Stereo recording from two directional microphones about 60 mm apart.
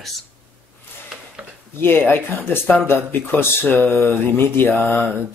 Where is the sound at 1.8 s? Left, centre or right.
Left.